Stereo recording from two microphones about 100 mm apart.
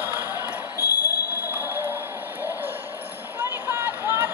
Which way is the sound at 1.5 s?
20° right (ahead or behind).